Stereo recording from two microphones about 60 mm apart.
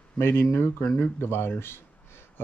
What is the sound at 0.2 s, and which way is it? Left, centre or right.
Speech, left.